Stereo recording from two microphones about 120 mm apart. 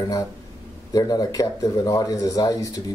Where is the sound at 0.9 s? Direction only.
30° left (ahead or behind).